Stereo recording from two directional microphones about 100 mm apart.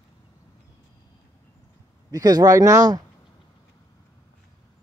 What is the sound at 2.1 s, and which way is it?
Speech, 40° right (ahead or behind).